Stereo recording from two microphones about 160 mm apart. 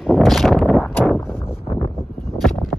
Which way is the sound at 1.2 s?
15° left (ahead or behind).